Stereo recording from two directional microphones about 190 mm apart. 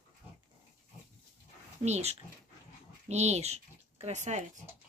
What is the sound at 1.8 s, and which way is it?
Speech, 35° right (ahead or behind).